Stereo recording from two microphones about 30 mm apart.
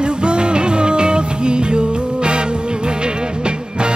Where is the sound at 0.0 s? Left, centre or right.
Right.